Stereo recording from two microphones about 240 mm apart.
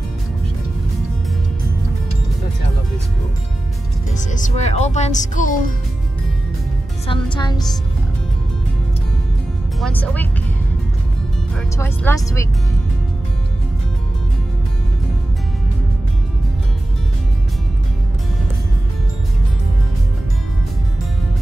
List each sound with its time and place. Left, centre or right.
4.3 s speech: left
7.1 s speech: centre
9.8 s speech: centre
11.5 s speech: centre